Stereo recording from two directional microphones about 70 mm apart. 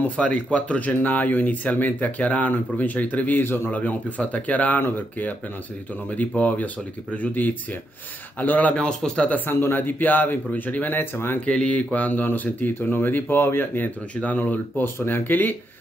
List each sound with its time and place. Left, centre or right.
0.0 s speech: centre
9.5 s speech: left
11.4 s speech: centre